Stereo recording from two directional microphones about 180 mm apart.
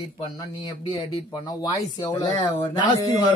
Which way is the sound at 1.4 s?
20° left (ahead or behind).